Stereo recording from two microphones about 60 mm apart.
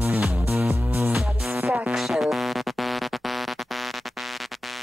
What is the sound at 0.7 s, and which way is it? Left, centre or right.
Music, right.